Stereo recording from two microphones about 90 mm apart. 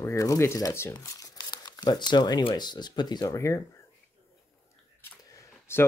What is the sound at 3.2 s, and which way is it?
Speech, 35° left (ahead or behind).